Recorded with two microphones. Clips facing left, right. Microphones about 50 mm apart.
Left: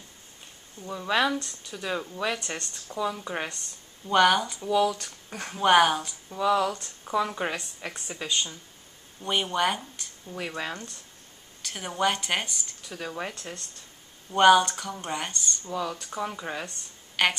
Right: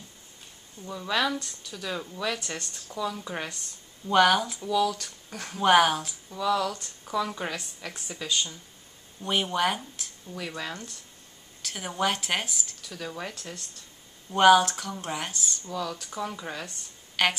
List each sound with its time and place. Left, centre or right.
0.7 s speech: centre
4.1 s speech: centre
4.6 s speech: centre
6.3 s speech: left
9.2 s speech: centre
10.3 s speech: centre
11.6 s speech: centre
12.8 s speech: centre
14.3 s speech: centre
15.6 s speech: centre